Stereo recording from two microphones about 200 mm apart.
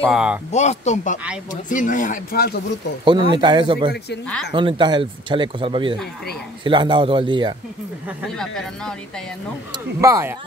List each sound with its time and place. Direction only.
0.1 s speech: 5° right (ahead or behind)
0.5 s speech: 35° left (ahead or behind); by 2.6 s 50° left (ahead or behind)
3.1 s speech: 25° right (ahead or behind)
9.9 s speech: 15° right (ahead or behind)